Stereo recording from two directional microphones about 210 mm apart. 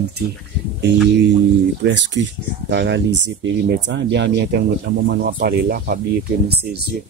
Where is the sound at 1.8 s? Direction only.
60° right (ahead or behind).